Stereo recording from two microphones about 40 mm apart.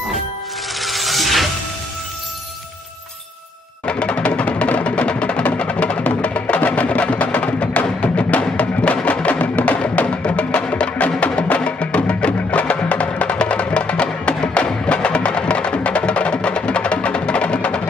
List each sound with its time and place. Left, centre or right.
0.7 s music: centre
3.8 s music: left